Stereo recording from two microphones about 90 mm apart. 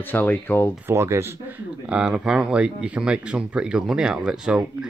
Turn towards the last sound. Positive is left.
turn(degrees=-10)  # may be behind; listen again after turning